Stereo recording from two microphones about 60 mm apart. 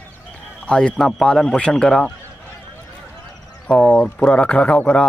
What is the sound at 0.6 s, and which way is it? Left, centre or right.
Speech, centre.